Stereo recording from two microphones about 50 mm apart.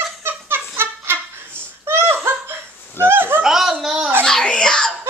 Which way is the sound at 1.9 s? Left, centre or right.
Right.